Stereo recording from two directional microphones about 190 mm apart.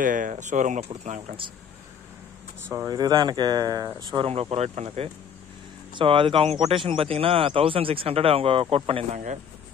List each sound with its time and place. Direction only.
0.0 s speech: 45° right (ahead or behind)
2.7 s speech: 15° right (ahead or behind); by 9.4 s 40° right (ahead or behind)